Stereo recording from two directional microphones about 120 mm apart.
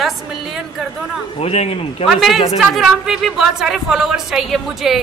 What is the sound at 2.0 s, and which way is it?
Speech, centre (ahead or behind).